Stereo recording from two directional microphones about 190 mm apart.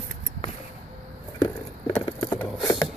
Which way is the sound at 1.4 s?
20° left (ahead or behind).